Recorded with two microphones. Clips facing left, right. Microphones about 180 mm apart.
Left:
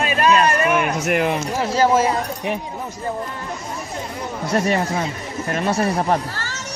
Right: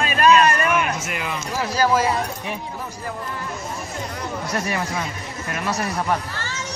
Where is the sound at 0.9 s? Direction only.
60° left (ahead or behind).